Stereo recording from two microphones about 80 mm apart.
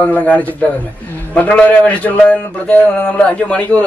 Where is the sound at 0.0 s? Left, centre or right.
Centre.